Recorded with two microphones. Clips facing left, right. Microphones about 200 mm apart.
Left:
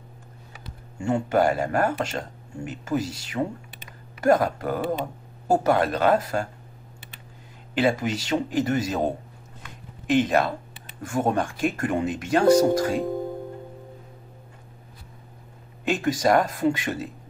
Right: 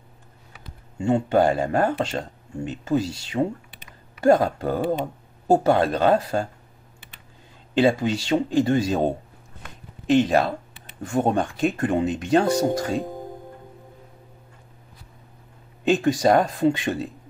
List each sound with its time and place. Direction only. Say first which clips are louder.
0.9 s speech: right 3 dB; 20° right (ahead or behind)
7.7 s speech: right 3 dB; 25° right (ahead or behind)
15.9 s speech: right 3 dB; 25° right (ahead or behind)